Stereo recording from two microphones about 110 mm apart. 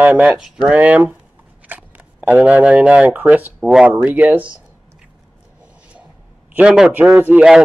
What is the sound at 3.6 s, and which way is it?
Speech, 5° right (ahead or behind).